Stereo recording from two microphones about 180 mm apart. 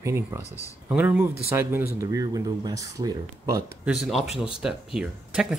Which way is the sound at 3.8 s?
5° right (ahead or behind).